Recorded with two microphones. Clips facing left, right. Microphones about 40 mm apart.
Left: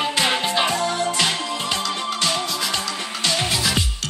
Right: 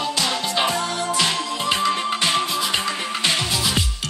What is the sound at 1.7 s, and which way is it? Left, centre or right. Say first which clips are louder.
Music: right 7 dB; right.